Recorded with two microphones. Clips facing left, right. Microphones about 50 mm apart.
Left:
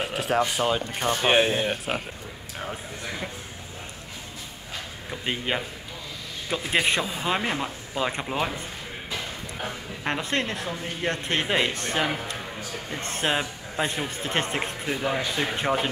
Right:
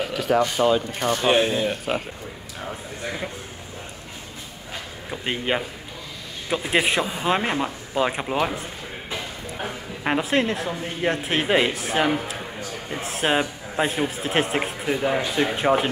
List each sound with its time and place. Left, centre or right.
0.0 s a sound: left
0.4 s speech: centre
5.1 s speech: centre
9.7 s a man's voice: centre